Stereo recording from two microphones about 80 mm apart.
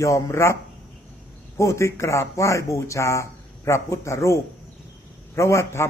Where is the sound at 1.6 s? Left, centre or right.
Left.